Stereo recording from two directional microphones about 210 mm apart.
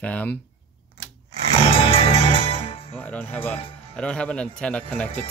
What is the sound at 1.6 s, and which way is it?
Music, 25° left (ahead or behind).